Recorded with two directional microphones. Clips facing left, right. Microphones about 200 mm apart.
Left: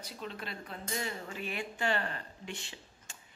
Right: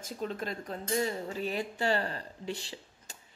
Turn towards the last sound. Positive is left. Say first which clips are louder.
# right 5 dB
turn(degrees=-35)  # may be behind; listen again after turning